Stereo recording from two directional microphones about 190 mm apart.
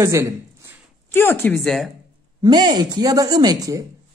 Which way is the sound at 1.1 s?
10° left (ahead or behind).